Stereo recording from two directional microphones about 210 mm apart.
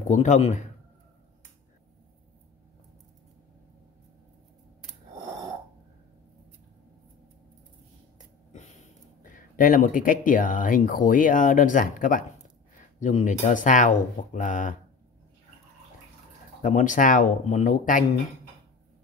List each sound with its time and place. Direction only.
0.1 s speech: 35° left (ahead or behind)
8.5 s speech: 35° left (ahead or behind)
16.6 s speech: 35° left (ahead or behind)